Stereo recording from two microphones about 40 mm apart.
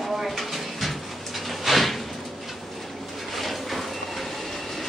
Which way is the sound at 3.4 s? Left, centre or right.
Centre.